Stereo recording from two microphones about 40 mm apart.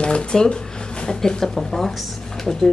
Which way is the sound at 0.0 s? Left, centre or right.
Left.